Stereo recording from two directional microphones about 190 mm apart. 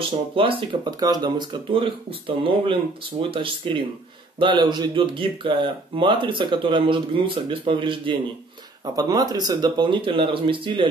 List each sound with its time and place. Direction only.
0.4 s speech: 25° right (ahead or behind)